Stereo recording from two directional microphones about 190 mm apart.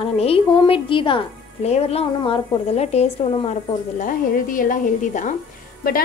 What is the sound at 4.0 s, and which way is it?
A woman's voice, 45° left (ahead or behind).